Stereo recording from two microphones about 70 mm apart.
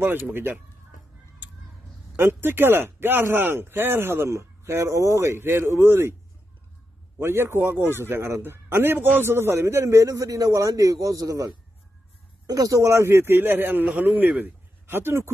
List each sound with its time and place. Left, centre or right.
0.3 s speech: right
2.1 s speech: right
7.2 s a man's voice: right